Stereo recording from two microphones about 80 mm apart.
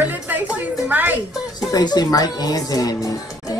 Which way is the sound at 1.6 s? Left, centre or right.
Left.